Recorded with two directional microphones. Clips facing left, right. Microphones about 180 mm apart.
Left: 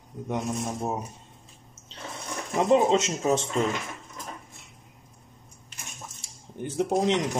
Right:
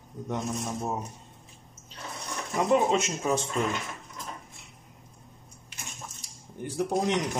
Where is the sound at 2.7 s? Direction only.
25° left (ahead or behind).